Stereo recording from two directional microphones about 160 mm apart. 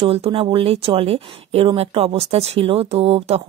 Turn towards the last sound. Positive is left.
turn(degrees=-40)  # may be behind; listen again after turning